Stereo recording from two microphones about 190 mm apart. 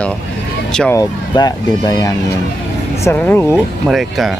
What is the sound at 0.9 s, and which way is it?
Speech, 20° left (ahead or behind).